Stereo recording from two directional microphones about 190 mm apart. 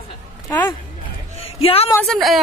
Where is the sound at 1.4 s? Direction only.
30° left (ahead or behind).